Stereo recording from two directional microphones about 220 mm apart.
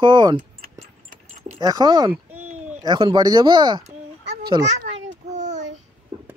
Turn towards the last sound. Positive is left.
turn(degrees=-30)  # may be behind; listen again after turning